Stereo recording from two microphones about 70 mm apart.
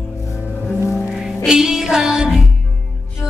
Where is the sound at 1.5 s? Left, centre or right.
Centre.